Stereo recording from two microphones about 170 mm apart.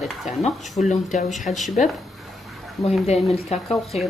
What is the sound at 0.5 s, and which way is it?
Speech, centre (ahead or behind).